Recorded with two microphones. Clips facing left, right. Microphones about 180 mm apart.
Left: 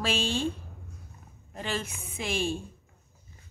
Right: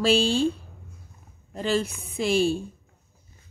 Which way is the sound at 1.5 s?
35° right (ahead or behind).